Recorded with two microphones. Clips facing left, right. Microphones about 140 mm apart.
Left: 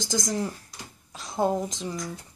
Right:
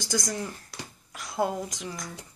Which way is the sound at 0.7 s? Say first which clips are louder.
Right 3 dB; 75° right (ahead or behind).